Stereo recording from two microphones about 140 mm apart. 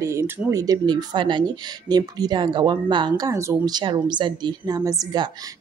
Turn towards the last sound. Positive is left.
turn(degrees=-30)  # may be behind; listen again after turning